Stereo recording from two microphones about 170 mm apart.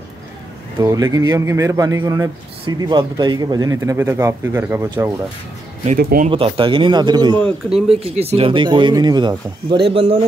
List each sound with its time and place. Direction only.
0.7 s speech: 15° right (ahead or behind)
5.9 s speech: 60° right (ahead or behind)
6.2 s speech: 30° right (ahead or behind)